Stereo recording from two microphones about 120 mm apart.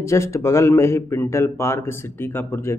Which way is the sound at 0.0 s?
25° left (ahead or behind).